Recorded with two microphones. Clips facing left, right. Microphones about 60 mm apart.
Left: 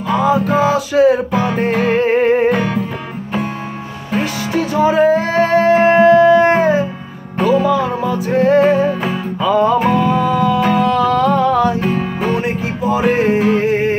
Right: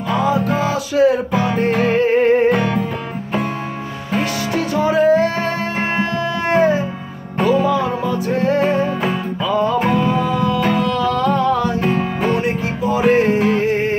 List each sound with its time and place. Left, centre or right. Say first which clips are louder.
0.1 s music: left 4 dB; centre
1.3 s music: left 1 dB; centre
4.1 s music: left 2 dB; centre
10.3 s music: left 3 dB; centre
11.8 s music: even; centre
12.4 s music: left 1 dB; left